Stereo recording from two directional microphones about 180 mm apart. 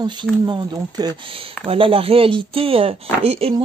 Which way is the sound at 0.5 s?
25° right (ahead or behind).